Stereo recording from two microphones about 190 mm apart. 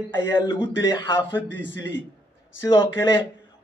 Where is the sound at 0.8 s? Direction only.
20° left (ahead or behind).